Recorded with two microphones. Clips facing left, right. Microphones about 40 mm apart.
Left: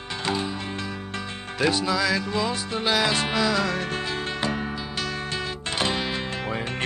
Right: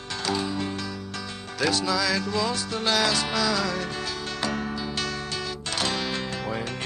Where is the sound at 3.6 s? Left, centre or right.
Left; by 4.8 s centre.